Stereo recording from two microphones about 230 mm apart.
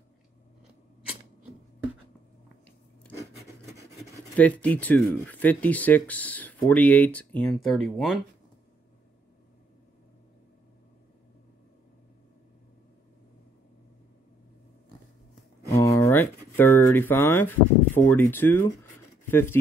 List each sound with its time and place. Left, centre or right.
4.0 s speech: centre
15.7 s speech: centre
19.2 s a sound: centre